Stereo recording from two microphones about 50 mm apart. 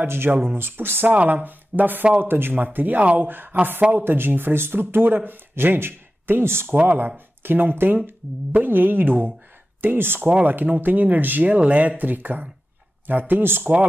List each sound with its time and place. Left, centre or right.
0.0 s speech: right
3.0 s speech: right
3.5 s speech: right
10.4 s speech: right